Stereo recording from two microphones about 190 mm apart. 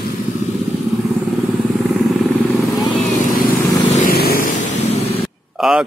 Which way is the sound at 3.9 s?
50° left (ahead or behind).